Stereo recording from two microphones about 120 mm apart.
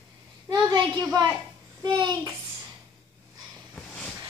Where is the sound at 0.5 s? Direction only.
35° right (ahead or behind).